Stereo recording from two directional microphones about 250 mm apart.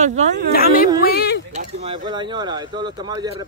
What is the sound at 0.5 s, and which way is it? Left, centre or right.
Speech, left.